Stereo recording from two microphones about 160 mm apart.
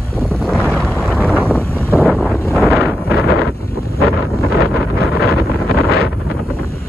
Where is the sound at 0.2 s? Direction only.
5° left (ahead or behind).